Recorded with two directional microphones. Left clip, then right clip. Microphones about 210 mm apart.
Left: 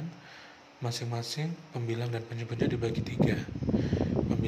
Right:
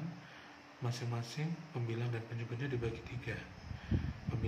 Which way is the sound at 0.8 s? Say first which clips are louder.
Left 8 dB; 35° left (ahead or behind).